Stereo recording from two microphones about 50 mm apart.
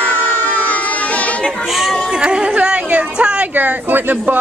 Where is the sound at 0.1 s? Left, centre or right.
Left.